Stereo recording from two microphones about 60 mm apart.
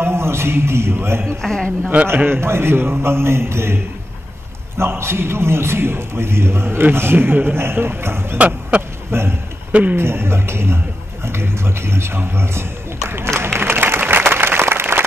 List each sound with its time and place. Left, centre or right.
0.0 s a man's voice: right
1.2 s a man's voice: centre
2.2 s a man's voice: right
8.4 s speech: right
9.1 s a man's voice: right
9.7 s speech: right
9.9 s a man's voice: right
13.4 s applause: right